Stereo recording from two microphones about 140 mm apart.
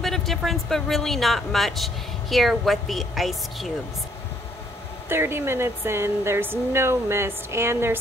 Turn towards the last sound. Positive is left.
turn(degrees=-20)  # may be behind; listen again after turning